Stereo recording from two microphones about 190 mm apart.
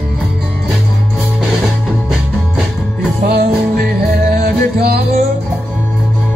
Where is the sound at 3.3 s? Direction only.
55° right (ahead or behind).